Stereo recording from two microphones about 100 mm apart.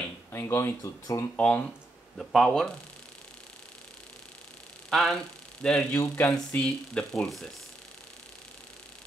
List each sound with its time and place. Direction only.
0.3 s speech: 25° left (ahead or behind)
1.3 s speech: 10° left (ahead or behind)
2.1 s speech: centre (ahead or behind)
4.8 s speech: centre (ahead or behind)
5.9 s speech: 30° left (ahead or behind)
6.3 s speech: 10° left (ahead or behind)